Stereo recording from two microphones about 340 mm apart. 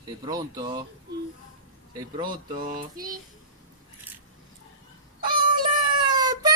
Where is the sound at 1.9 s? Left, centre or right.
Centre.